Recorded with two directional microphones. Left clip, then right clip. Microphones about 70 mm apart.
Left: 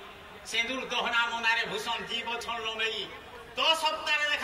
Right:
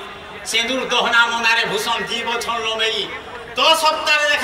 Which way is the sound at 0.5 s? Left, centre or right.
Centre.